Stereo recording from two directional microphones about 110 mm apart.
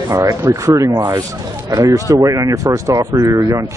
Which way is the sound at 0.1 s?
30° right (ahead or behind).